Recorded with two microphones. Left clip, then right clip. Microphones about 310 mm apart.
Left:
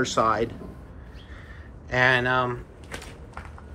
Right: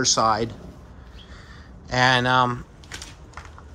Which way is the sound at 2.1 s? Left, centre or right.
Centre.